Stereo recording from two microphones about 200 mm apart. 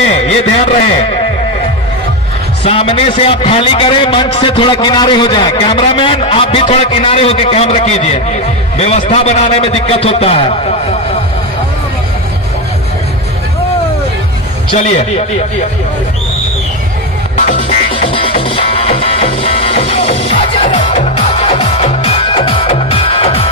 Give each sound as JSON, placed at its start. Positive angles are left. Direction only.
{"t": 0.1, "sound": "speech", "side_deg": 35}
{"t": 2.6, "sound": "a man's voice", "side_deg": 30}
{"t": 14.7, "sound": "a man's voice", "side_deg": 30}
{"t": 17.6, "sound": "music", "side_deg": 25}